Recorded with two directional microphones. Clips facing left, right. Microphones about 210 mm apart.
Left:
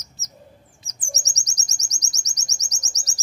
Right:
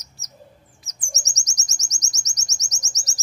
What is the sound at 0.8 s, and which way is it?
Chirp, 35° left (ahead or behind).